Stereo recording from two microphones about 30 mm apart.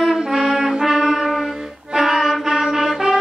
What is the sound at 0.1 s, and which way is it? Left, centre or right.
Music, centre.